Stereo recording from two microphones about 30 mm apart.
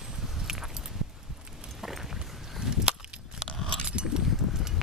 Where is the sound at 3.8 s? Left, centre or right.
Right.